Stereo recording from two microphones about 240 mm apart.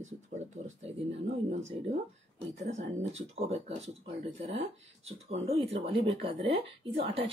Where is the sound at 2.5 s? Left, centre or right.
Right.